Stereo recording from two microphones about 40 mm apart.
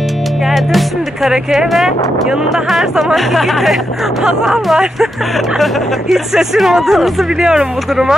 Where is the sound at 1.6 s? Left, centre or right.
Centre.